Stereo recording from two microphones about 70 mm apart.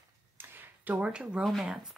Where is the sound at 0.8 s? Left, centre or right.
Right.